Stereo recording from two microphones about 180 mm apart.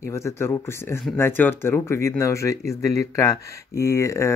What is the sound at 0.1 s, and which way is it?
Speech, 15° left (ahead or behind).